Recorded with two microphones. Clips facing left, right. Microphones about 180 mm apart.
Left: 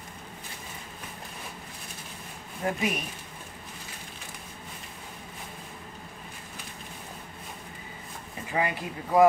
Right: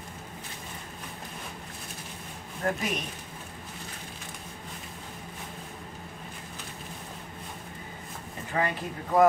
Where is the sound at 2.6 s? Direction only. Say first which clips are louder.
Right 1 dB; 10° left (ahead or behind).